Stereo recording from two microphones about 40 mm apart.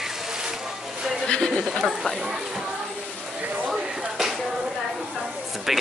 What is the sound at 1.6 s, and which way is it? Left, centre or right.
Speech, centre.